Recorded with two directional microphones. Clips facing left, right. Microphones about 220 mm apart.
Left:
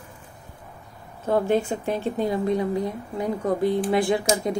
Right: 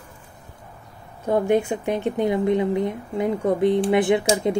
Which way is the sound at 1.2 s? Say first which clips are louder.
Right 2 dB; 15° right (ahead or behind).